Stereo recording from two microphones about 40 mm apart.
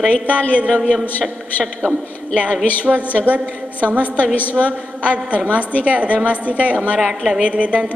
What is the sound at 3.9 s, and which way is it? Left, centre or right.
Speech, left.